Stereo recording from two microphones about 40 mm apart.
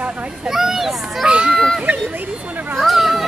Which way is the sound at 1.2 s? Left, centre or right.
Right.